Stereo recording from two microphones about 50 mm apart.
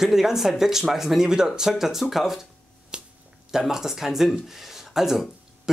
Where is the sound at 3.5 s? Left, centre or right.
Centre.